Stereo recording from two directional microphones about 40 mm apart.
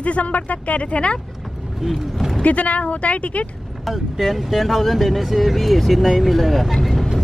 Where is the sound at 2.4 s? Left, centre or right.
Left.